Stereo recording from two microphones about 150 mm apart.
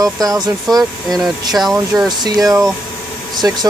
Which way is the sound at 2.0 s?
25° right (ahead or behind).